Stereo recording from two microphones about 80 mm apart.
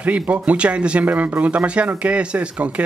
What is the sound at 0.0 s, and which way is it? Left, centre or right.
Speech, centre.